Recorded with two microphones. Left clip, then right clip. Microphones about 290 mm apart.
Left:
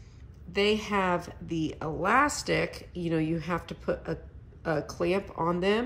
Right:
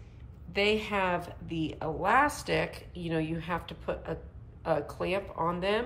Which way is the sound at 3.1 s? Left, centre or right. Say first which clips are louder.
Left 3 dB; left.